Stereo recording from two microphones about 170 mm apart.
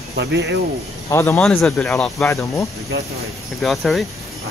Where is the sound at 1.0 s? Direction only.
15° left (ahead or behind).